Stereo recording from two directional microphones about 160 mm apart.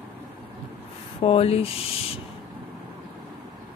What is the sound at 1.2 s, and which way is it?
Speech, 40° left (ahead or behind).